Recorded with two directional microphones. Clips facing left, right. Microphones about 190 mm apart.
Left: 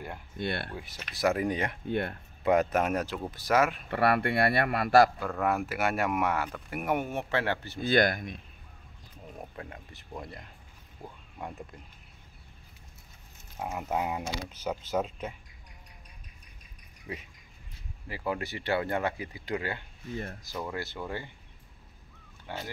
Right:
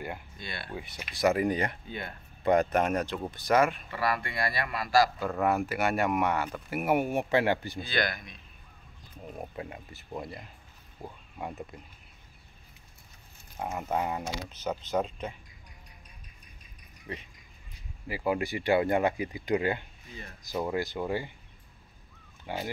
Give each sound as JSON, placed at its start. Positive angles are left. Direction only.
{"t": 0.4, "sound": "speech", "side_deg": 60}
{"t": 0.7, "sound": "speech", "side_deg": -5}
{"t": 1.9, "sound": "speech", "side_deg": 65}
{"t": 2.4, "sound": "speech", "side_deg": 5}
{"t": 3.9, "sound": "speech", "side_deg": 60}
{"t": 5.2, "sound": "speech", "side_deg": 0}
{"t": 7.8, "sound": "speech", "side_deg": 50}
{"t": 9.6, "sound": "speech", "side_deg": -5}
{"t": 13.6, "sound": "speech", "side_deg": 0}
{"t": 17.1, "sound": "speech", "side_deg": 5}
{"t": 18.0, "sound": "speech", "side_deg": -10}
{"t": 22.5, "sound": "speech", "side_deg": -15}